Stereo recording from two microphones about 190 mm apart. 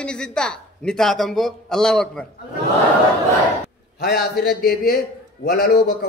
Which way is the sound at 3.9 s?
55° left (ahead or behind).